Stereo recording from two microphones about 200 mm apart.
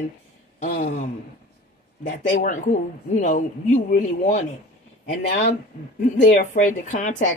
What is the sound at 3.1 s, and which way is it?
Speech, 40° left (ahead or behind).